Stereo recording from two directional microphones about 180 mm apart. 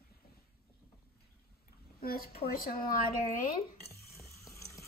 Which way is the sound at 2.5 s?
55° left (ahead or behind).